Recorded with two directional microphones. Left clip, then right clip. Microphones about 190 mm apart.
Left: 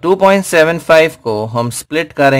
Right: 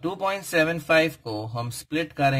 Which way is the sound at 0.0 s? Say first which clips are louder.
Left 17 dB; 40° left (ahead or behind).